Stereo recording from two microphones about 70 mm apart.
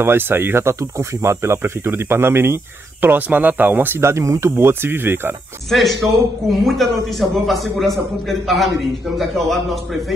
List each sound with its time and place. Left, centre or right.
0.0 s speech: right
4.6 s speech: right
5.7 s a man's voice: centre